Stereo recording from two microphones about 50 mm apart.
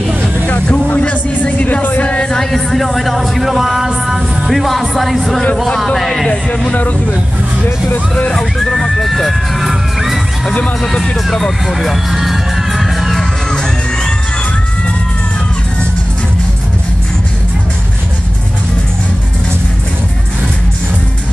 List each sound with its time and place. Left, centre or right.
0.5 s speech: left
2.2 s speech: centre
6.2 s speech: centre
8.3 s speech: centre
10.8 s speech: centre
11.6 s music: centre